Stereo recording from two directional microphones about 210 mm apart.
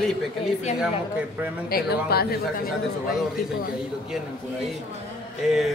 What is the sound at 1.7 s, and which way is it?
Speech, 45° left (ahead or behind).